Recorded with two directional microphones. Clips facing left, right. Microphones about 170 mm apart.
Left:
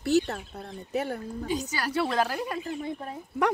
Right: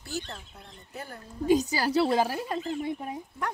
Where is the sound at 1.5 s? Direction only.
30° right (ahead or behind).